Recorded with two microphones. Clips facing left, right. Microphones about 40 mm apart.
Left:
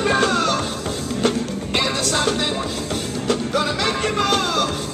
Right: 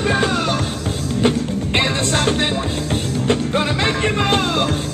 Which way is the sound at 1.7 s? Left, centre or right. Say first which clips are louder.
Right 2 dB; right.